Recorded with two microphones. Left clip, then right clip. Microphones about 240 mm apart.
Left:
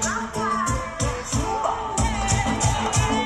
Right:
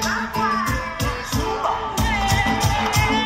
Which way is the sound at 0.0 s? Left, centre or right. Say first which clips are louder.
Right 4 dB; right.